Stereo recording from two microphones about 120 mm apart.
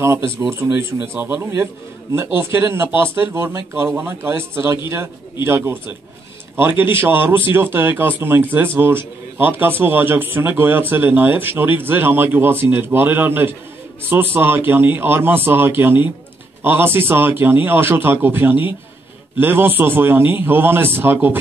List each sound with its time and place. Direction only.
0.0 s a man's voice: 20° right (ahead or behind)